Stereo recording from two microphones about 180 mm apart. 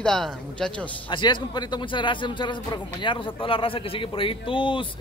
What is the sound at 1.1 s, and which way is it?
Speech, 25° left (ahead or behind).